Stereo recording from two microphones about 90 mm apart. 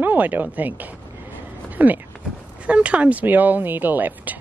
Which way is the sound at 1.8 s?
20° right (ahead or behind).